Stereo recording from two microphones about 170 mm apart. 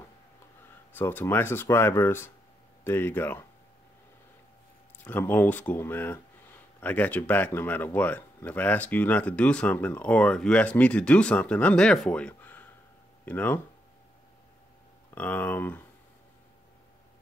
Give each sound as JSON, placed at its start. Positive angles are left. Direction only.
{"t": 0.9, "sound": "speech", "side_deg": 15}
{"t": 5.0, "sound": "speech", "side_deg": 10}
{"t": 15.1, "sound": "speech", "side_deg": 10}